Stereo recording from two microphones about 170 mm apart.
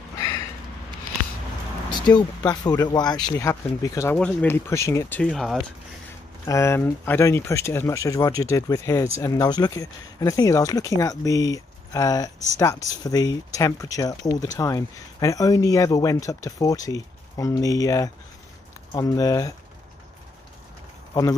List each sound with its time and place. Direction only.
1.9 s speech: 25° left (ahead or behind)
5.2 s speech: centre (ahead or behind)
6.4 s speech: 15° left (ahead or behind)
21.1 s speech: 20° left (ahead or behind)